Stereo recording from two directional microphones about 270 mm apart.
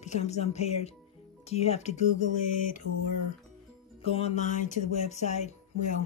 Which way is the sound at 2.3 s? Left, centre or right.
Left.